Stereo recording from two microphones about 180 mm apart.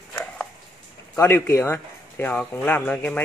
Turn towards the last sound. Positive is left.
turn(degrees=10)  # may be behind; listen again after turning